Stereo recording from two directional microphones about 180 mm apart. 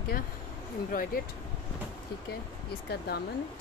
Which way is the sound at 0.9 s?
50° left (ahead or behind).